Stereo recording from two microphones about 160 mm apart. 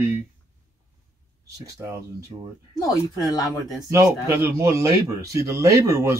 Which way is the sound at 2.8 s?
20° left (ahead or behind).